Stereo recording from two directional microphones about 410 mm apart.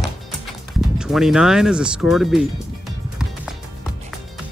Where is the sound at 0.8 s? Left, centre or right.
Centre.